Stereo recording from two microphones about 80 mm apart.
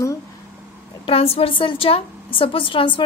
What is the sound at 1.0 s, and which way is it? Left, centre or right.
A woman's voice, left.